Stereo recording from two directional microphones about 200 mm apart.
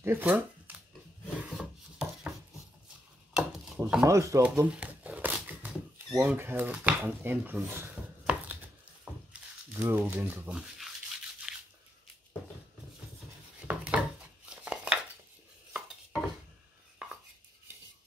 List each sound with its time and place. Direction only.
0.0 s shuffling cards: 10° right (ahead or behind)
1.4 s a sound: 5° right (ahead or behind)
3.3 s chopping: 5° right (ahead or behind)
4.0 s speech: 15° right (ahead or behind)
4.6 s a sound: 5° right (ahead or behind)
9.0 s crumpling: 10° right (ahead or behind)
11.5 s crunch: 5° right (ahead or behind)
13.7 s a sound: 5° right (ahead or behind)
17.0 s chopping: 5° right (ahead or behind)